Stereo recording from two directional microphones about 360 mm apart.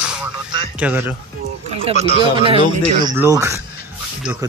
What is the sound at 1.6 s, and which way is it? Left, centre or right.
Speech, centre.